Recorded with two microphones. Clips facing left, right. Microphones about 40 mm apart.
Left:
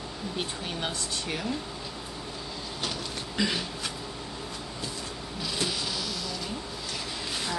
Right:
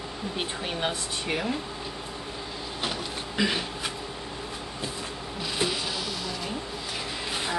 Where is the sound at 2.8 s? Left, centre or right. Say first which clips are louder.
Right 3 dB; centre.